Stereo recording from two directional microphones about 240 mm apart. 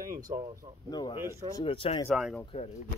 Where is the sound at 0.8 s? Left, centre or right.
Centre.